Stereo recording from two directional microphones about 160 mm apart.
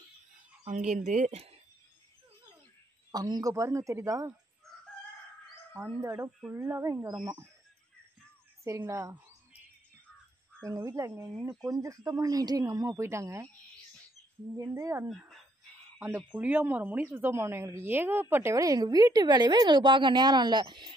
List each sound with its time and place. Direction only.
0.7 s speech: 50° right (ahead or behind)
3.1 s speech: 25° right (ahead or behind)
5.7 s bird: 15° right (ahead or behind)
8.6 s bird: 15° right (ahead or behind)
10.6 s speech: 20° right (ahead or behind)
14.6 s speech: 20° right (ahead or behind)
16.2 s speech: 10° right (ahead or behind); by 20.9 s 30° right (ahead or behind)